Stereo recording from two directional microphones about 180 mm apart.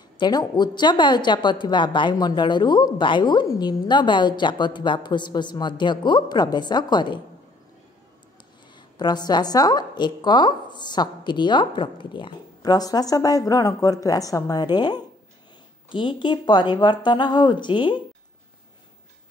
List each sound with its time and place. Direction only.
0.2 s a woman's voice: 25° left (ahead or behind)
8.7 s a woman's voice: 25° left (ahead or behind)